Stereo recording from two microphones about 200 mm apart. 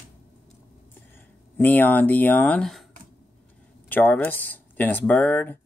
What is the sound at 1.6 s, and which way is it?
Speech, 10° left (ahead or behind).